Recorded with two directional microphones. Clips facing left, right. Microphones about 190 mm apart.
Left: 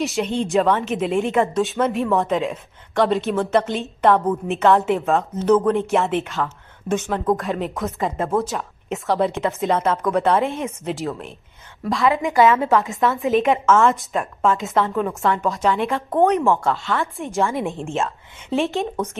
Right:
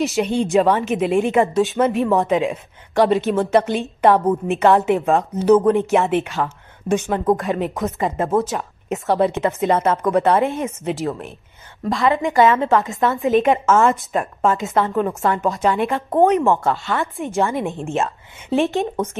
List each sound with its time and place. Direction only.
0.0 s a woman's voice: 5° right (ahead or behind)
4.0 s a woman's voice: 20° right (ahead or behind)
4.5 s a woman's voice: 5° right (ahead or behind)
5.7 s a woman's voice: 5° right (ahead or behind)
6.3 s a sound: 20° right (ahead or behind)
7.3 s a woman's voice: centre (ahead or behind)